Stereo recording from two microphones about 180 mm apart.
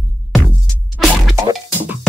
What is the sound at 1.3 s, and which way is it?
Music, 15° right (ahead or behind).